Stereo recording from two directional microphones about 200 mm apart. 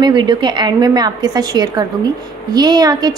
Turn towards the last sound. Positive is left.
turn(degrees=-20)  # may be behind; listen again after turning